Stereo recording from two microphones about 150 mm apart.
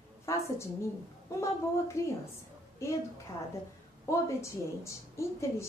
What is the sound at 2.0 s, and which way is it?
Speech, 20° left (ahead or behind).